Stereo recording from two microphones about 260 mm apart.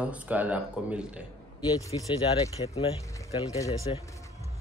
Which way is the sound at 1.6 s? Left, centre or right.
Centre.